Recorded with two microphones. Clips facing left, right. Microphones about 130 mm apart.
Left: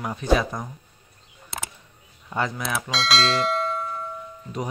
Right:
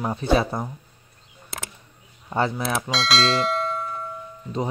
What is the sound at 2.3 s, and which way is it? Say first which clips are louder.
Speech: right 3 dB; 30° right (ahead or behind).